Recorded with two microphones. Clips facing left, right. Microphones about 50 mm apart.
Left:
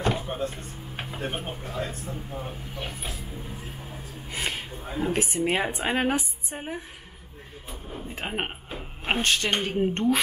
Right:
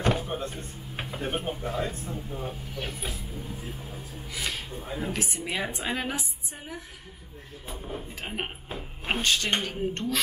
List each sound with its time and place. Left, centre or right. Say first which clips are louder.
0.0 s a sound: even; left
1.1 s speech: right 2 dB; centre
1.6 s speech: right 2 dB; centre
2.0 s speech: even; centre
2.9 s speech: right 1 dB; left
4.3 s speech: left 3 dB; left
4.7 s speech: left 4 dB; centre
5.1 s a woman's voice: left 6 dB; left
8.1 s speech: left 7 dB; left